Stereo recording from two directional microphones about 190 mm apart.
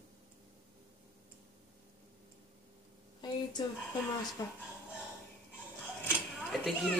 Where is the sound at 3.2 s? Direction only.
25° left (ahead or behind).